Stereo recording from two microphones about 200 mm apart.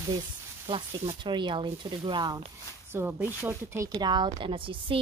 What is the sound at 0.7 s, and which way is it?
A woman's voice, 25° right (ahead or behind).